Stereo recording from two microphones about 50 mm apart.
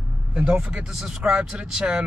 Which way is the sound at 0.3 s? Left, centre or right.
Right.